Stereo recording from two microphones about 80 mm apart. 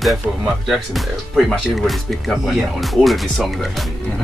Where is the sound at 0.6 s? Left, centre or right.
Centre.